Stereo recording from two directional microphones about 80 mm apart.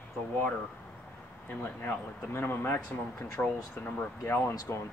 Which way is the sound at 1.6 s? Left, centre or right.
Left.